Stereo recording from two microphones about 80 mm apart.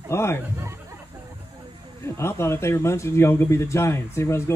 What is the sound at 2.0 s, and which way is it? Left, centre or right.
A man's voice, left.